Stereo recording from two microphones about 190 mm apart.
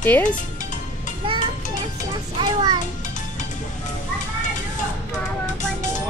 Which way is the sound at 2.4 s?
20° right (ahead or behind).